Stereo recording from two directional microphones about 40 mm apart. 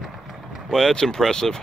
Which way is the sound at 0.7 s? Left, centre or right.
Centre.